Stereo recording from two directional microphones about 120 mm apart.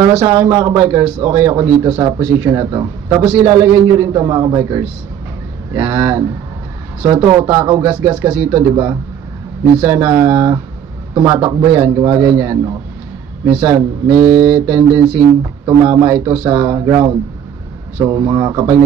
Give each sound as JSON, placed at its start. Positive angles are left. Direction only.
{"t": 0.2, "sound": "a man's voice", "side_deg": -30}